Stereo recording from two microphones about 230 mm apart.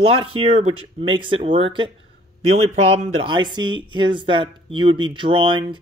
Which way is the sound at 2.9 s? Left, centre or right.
Right.